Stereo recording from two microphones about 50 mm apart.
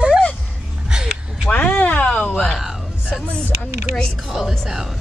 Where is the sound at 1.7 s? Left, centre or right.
Left.